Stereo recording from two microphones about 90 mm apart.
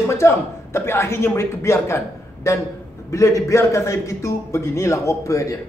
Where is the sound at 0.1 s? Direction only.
30° left (ahead or behind).